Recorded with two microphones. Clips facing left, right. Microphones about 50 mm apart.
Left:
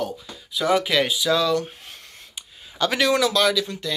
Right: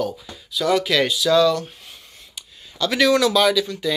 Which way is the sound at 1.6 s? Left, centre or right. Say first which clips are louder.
Left 2 dB; left.